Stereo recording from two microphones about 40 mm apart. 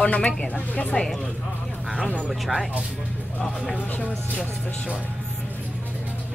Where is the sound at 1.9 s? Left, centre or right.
Left.